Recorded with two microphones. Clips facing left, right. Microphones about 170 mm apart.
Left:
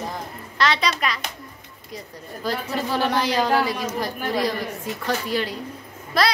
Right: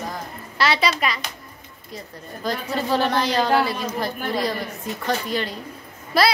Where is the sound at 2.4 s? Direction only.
10° left (ahead or behind).